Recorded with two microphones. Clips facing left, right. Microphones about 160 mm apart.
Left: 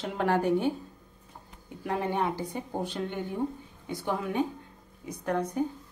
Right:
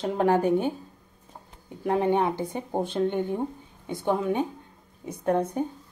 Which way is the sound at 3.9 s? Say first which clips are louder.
Right 6 dB; 25° right (ahead or behind).